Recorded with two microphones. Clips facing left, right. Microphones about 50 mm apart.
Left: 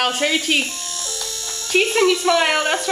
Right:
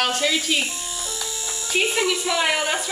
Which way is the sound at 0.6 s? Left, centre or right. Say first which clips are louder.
Left 1 dB; centre.